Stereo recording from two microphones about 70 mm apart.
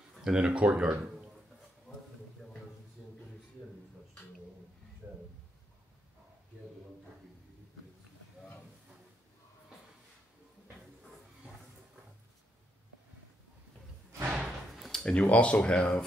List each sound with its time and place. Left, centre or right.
0.2 s speech: centre
14.2 s slam: centre
14.8 s a sound: centre
15.0 s speech: centre